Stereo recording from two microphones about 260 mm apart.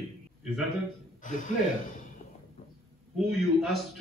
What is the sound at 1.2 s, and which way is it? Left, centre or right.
Speech, left.